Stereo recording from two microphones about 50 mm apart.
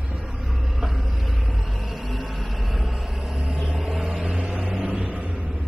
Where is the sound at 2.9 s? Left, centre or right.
Centre.